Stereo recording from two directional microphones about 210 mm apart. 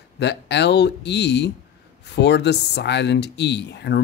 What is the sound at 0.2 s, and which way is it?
Speech, 55° left (ahead or behind).